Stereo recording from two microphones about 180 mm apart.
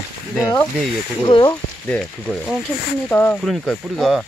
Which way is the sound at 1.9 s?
10° left (ahead or behind).